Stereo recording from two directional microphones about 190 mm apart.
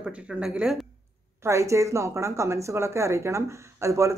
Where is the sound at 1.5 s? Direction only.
15° right (ahead or behind).